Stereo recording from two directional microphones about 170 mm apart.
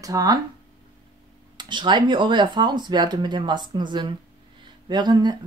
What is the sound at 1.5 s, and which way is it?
Speech, 25° right (ahead or behind).